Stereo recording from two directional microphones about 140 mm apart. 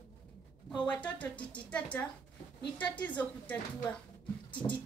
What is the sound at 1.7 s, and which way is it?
A woman's voice, 10° left (ahead or behind).